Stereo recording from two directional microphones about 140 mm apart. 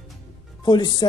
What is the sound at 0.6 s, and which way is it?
Speech, 30° left (ahead or behind).